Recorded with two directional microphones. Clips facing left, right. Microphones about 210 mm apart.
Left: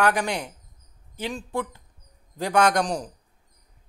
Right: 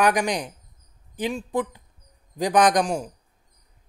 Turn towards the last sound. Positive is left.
turn(degrees=-10)  # may be behind; listen again after turning